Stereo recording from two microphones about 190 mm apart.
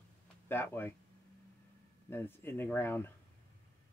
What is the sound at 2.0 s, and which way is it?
A man's voice, 10° left (ahead or behind).